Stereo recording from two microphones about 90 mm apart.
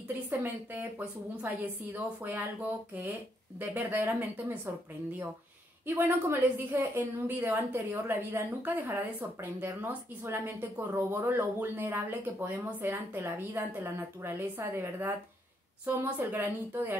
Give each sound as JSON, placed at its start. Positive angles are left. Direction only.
{"t": 0.3, "sound": "a woman's voice", "side_deg": -20}
{"t": 5.9, "sound": "a woman's voice", "side_deg": -20}